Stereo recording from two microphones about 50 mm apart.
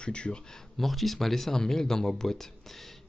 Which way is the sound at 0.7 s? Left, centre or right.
Centre.